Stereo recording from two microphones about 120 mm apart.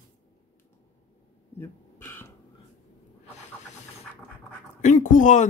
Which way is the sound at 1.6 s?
20° left (ahead or behind).